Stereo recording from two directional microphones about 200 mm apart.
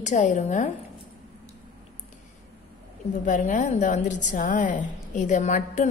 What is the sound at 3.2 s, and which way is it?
A woman's voice, 40° left (ahead or behind).